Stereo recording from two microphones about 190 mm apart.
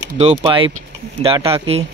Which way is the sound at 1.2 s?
30° right (ahead or behind).